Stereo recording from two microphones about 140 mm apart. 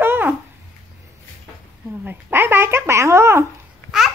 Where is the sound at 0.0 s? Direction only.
15° right (ahead or behind).